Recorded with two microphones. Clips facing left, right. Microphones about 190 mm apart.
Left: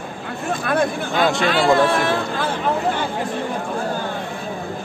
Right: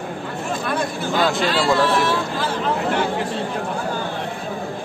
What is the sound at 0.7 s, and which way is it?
Speech, 55° left (ahead or behind).